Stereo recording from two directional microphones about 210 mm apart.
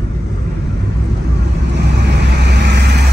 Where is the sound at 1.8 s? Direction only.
55° right (ahead or behind).